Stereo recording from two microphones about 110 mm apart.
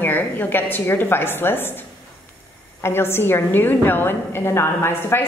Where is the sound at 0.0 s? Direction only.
20° left (ahead or behind).